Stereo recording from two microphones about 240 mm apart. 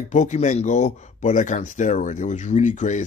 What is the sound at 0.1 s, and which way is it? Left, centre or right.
Speech, left.